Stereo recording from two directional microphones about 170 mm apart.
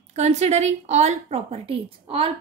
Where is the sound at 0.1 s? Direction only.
40° right (ahead or behind).